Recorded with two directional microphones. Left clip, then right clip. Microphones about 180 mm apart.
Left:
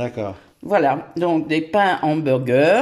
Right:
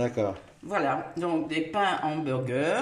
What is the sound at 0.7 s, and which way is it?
Speech, 65° left (ahead or behind).